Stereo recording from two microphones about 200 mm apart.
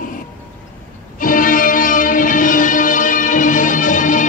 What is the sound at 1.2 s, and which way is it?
Music, 45° left (ahead or behind).